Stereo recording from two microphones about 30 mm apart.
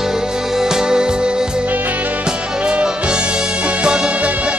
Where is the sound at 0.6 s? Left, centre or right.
Centre.